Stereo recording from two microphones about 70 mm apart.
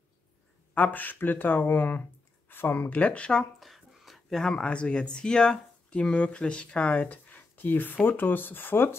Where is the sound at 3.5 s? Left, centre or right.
Centre.